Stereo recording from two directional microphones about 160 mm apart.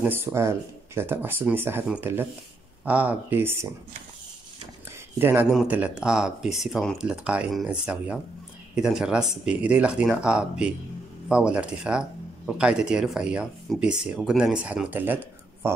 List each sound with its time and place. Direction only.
0.0 s speech: 15° right (ahead or behind)
5.2 s speech: 15° right (ahead or behind)